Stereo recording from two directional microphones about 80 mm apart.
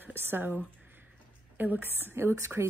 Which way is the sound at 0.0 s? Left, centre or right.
Right.